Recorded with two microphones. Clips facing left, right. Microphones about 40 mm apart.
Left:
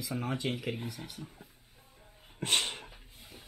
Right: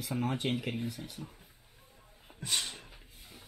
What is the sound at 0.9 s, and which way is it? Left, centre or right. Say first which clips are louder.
Speech: right 1 dB; left.